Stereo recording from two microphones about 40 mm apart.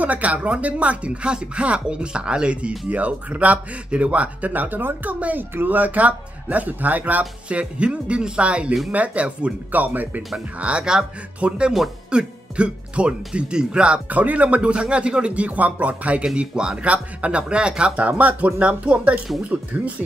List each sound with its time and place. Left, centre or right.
0.0 s speech: right
2.9 s speech: right
7.4 s speech: right
9.7 s speech: right
10.6 s speech: right
14.0 s speech: right
16.3 s speech: right
16.8 s speech: right